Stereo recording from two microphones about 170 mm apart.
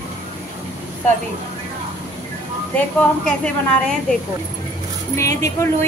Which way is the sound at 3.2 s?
5° left (ahead or behind).